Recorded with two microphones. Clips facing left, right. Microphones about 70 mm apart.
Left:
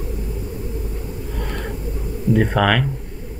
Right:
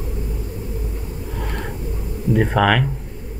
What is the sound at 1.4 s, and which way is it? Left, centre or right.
Gasp, centre.